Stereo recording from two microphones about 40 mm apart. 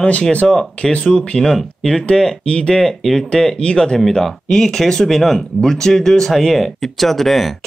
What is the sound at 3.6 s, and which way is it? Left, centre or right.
Speech, left.